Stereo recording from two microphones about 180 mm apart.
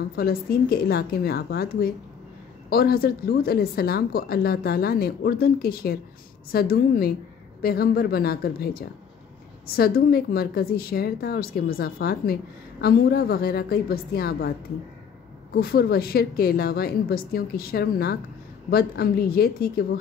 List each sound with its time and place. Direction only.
0.1 s a woman's voice: 55° left (ahead or behind)
15.5 s a woman's voice: 60° left (ahead or behind)